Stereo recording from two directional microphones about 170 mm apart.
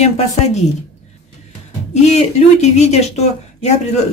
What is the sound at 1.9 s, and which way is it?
Speech, 40° left (ahead or behind).